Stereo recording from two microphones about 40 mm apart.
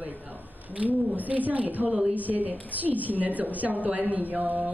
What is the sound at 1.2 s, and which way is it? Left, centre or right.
A woman's voice, right.